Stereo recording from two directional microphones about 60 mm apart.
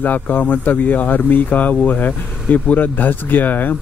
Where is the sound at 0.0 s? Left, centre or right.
Left.